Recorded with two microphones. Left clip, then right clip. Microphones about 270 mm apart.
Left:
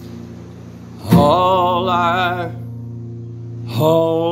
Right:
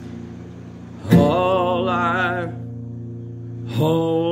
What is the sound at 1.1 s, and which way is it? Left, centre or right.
Music, centre.